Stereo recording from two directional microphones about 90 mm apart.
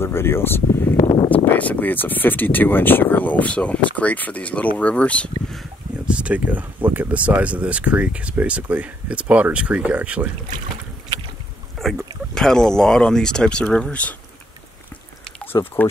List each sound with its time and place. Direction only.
0.0 s speech: 25° left (ahead or behind)
0.9 s a sound: 65° left (ahead or behind)
1.3 s speech: 20° left (ahead or behind)
6.0 s speech: 15° right (ahead or behind)
11.8 s a sound: centre (ahead or behind)
12.4 s speech: 5° left (ahead or behind)
15.4 s speech: 25° left (ahead or behind)